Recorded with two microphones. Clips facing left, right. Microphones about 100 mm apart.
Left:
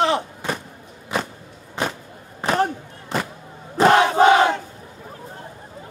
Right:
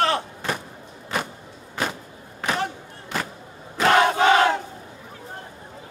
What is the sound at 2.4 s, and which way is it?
Slam, 40° left (ahead or behind).